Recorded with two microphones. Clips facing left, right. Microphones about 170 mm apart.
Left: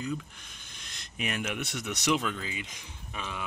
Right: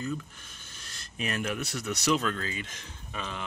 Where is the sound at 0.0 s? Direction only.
15° left (ahead or behind).